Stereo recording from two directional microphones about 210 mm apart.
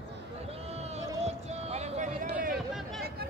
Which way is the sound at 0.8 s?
30° right (ahead or behind).